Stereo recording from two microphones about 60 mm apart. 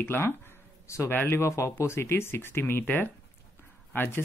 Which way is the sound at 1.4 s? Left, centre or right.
Left.